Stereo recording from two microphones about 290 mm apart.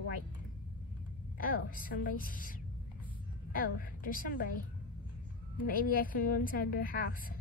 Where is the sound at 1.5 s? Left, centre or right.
Left.